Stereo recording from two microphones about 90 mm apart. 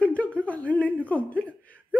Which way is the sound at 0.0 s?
15° left (ahead or behind).